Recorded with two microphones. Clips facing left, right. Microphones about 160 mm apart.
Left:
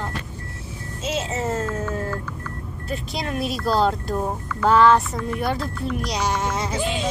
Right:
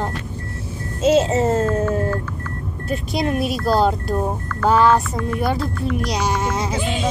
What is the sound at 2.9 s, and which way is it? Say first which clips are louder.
A woman's voice: right 7 dB; 15° right (ahead or behind).